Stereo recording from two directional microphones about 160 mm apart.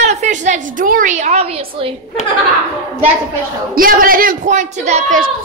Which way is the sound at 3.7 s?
60° right (ahead or behind).